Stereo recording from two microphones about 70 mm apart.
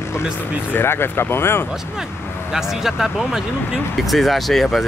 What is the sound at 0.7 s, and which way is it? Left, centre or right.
Speech, left.